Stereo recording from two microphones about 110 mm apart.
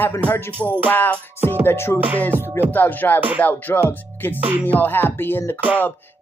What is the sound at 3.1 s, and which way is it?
Music, 15° right (ahead or behind).